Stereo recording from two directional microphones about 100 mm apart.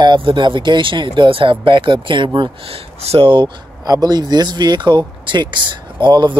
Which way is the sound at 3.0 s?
80° right.